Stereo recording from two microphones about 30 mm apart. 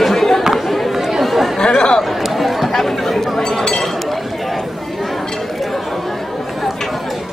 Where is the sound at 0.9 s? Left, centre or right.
Centre.